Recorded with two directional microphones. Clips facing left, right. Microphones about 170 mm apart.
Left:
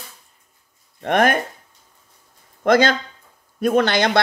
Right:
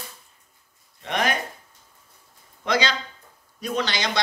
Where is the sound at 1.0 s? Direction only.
55° left (ahead or behind).